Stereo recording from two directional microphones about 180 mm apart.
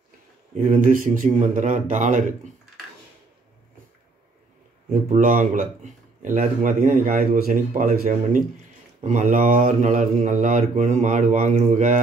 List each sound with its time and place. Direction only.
0.6 s speech: 50° right (ahead or behind)
5.1 s speech: 45° right (ahead or behind)